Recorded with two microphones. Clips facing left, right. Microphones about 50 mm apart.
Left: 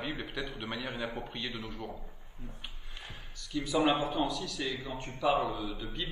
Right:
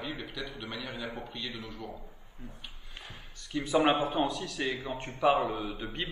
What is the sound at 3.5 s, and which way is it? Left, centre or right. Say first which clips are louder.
A man's voice: right 2 dB; right.